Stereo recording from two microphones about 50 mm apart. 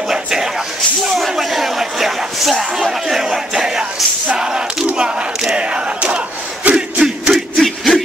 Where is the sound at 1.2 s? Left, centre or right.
Centre.